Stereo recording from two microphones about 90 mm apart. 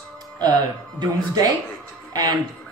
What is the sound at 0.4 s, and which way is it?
Speech, 45° right (ahead or behind).